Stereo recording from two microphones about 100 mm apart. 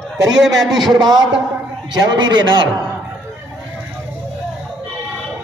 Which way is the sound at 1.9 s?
50° right (ahead or behind).